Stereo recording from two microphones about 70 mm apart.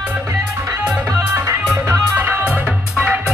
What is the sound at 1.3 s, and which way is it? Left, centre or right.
Music, right.